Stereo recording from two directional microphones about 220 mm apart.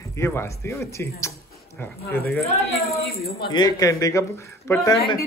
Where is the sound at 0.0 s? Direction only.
15° left (ahead or behind).